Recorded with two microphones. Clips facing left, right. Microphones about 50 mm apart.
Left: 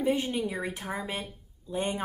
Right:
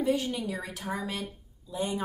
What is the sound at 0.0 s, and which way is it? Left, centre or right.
Speech, left.